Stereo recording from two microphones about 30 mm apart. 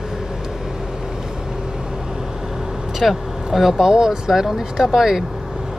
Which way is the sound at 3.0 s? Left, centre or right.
Centre.